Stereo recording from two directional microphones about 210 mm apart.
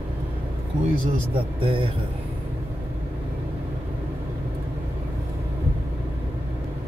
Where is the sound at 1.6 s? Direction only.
25° right (ahead or behind).